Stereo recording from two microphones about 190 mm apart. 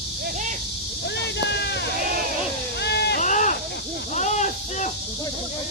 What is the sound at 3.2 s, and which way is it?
Sheep, 40° left (ahead or behind).